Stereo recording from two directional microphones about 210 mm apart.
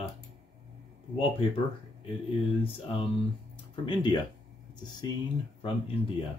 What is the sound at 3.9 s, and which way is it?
Speech, 20° left (ahead or behind).